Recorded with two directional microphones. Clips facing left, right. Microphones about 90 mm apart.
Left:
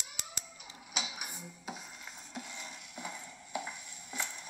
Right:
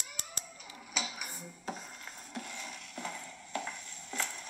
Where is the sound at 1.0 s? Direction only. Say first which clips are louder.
Right 1 dB; 45° right (ahead or behind).